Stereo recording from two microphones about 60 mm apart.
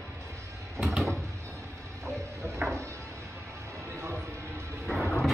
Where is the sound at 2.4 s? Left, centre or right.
Right.